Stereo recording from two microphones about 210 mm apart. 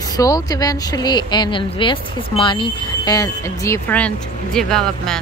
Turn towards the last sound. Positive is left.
turn(degrees=0)  # may be behind; listen again after turning